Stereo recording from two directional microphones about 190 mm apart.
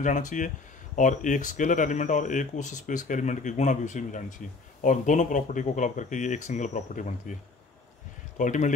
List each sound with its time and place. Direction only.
0.0 s speech: 40° left (ahead or behind)
8.4 s speech: 40° left (ahead or behind)